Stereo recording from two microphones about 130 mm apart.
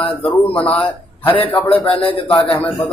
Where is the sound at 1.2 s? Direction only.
45° left (ahead or behind).